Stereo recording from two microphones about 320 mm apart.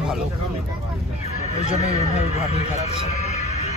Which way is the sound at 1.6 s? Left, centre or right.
Centre.